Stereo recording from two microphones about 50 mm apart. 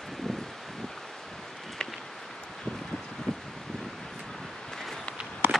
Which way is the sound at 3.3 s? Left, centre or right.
Centre.